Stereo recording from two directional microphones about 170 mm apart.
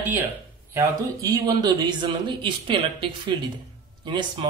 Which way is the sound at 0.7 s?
20° right (ahead or behind).